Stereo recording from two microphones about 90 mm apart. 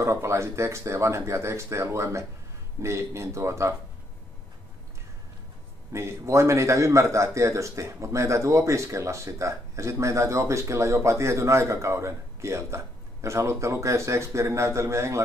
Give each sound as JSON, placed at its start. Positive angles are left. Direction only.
{"t": 0.0, "sound": "a man's voice", "side_deg": -30}
{"t": 5.9, "sound": "a man's voice", "side_deg": -30}